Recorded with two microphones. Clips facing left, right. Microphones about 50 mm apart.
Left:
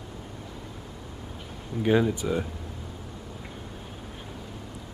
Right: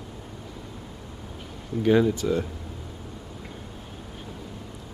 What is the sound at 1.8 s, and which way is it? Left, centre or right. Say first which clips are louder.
Speech: right 3 dB; centre.